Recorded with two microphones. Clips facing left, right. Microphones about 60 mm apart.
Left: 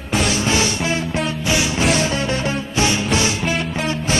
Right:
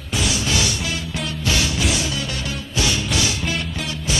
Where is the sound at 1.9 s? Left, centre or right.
Left.